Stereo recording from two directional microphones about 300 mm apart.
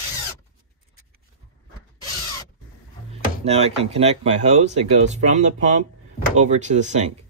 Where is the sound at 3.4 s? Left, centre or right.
Right.